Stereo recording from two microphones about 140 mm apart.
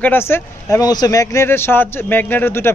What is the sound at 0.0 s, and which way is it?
A man's voice, 15° left (ahead or behind).